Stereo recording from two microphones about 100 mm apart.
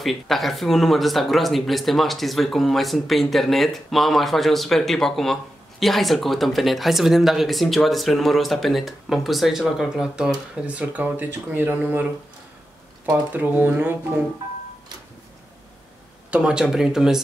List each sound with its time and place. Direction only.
0.0 s speech: centre (ahead or behind); by 12.1 s 15° right (ahead or behind)
13.1 s speech: 15° right (ahead or behind)
16.3 s speech: 10° right (ahead or behind)